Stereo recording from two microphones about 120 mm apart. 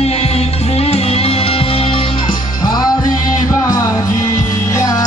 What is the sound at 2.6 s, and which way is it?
Music, 35° left (ahead or behind).